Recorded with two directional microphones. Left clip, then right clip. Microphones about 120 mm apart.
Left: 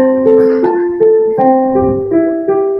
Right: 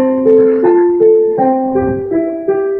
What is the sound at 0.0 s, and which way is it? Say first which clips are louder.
Music: left 1 dB; 30° right (ahead or behind).